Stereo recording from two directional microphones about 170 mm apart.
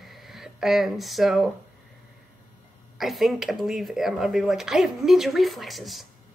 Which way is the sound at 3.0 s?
Centre (ahead or behind).